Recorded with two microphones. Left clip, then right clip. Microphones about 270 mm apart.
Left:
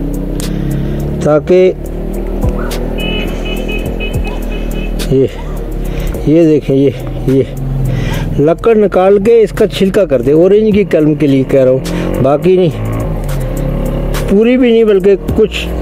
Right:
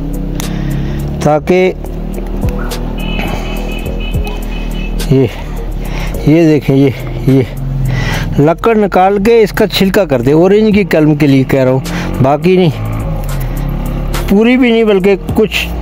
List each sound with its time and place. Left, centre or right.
1.2 s speech: right
6.2 s speech: right
14.3 s speech: right